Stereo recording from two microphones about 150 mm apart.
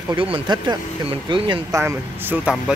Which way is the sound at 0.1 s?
35° right (ahead or behind).